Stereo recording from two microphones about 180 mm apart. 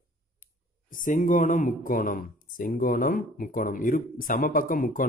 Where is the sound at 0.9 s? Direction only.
45° left (ahead or behind).